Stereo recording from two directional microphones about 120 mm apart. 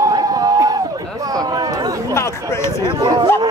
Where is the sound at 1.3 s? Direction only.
30° right (ahead or behind).